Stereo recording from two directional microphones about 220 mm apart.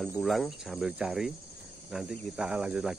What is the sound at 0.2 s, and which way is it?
Speech, centre (ahead or behind).